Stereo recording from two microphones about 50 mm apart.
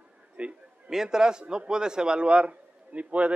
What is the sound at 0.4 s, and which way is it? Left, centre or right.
Speech, right.